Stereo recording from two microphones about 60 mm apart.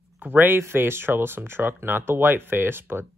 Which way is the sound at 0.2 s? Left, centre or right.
Right.